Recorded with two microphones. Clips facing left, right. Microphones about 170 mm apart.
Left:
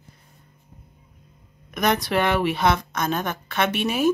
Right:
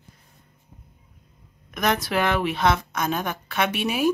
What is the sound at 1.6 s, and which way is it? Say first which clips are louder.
A woman's voice: left 2 dB; centre (ahead or behind).